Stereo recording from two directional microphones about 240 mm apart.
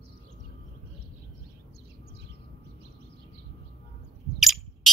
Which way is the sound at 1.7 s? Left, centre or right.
Right.